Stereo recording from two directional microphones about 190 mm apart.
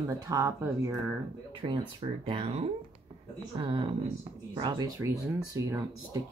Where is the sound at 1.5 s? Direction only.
25° right (ahead or behind).